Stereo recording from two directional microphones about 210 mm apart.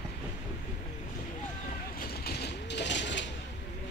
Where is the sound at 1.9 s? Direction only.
45° left (ahead or behind).